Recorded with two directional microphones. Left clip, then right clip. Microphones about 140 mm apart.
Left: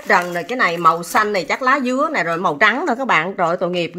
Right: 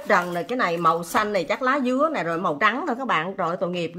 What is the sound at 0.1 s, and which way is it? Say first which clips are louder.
A woman's voice: left 5 dB; 35° left (ahead or behind).